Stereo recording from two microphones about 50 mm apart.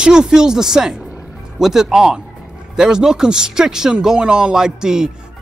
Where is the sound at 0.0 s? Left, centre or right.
Centre.